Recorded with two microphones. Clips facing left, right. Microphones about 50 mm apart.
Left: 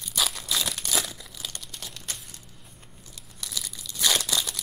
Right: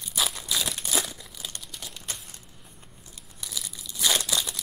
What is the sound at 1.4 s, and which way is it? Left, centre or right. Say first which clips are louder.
Crumpling: left 1 dB; centre.